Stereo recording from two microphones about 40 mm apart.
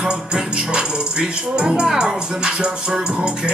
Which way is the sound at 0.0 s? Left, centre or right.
Right.